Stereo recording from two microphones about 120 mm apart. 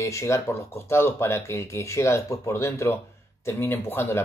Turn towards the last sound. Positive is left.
turn(degrees=20)  # may be behind; listen again after turning